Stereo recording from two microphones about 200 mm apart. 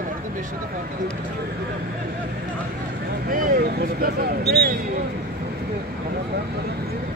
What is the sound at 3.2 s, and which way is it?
Speech, 45° right (ahead or behind).